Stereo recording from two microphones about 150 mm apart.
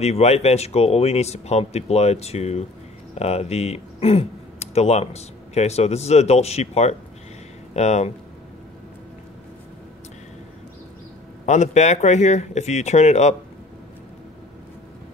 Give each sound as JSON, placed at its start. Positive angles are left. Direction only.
{"t": 0.0, "sound": "speech", "side_deg": 45}
{"t": 11.4, "sound": "speech", "side_deg": 50}